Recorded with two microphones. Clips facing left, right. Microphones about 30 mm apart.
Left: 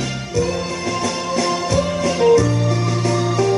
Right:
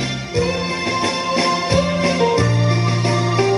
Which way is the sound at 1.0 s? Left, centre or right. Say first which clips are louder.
Right 2 dB; right.